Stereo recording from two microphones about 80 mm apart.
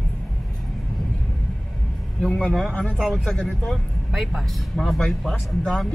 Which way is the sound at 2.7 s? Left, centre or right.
Centre.